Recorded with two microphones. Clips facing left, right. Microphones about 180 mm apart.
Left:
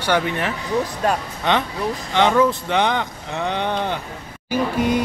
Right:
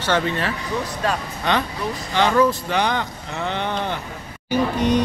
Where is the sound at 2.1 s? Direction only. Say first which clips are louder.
Left 1 dB; 20° left (ahead or behind).